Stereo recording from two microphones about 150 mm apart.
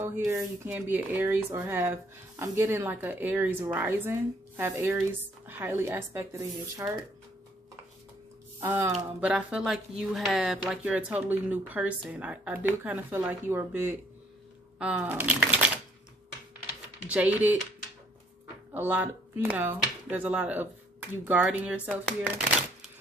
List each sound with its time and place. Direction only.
0.0 s speech: 20° right (ahead or behind)
8.5 s speech: 20° right (ahead or behind)
8.9 s speech: 5° right (ahead or behind)
16.6 s typing: 10° right (ahead or behind)
18.7 s speech: 10° right (ahead or behind)